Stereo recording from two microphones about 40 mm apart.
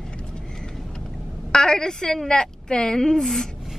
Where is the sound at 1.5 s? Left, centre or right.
Centre.